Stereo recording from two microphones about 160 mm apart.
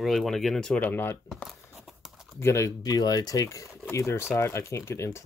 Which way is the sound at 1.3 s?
Centre (ahead or behind).